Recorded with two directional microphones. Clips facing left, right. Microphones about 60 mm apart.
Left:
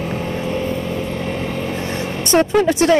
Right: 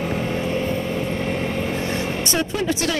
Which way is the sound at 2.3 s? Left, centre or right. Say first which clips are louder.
Left 11 dB; left.